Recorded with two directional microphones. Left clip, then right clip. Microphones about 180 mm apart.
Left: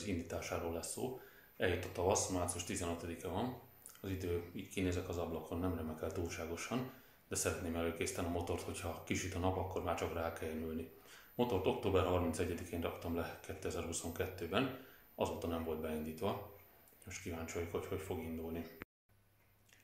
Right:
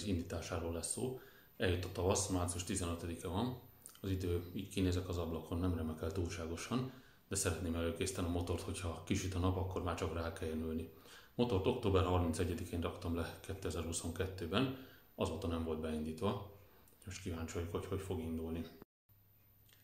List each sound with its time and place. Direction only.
0.0 s speech: centre (ahead or behind)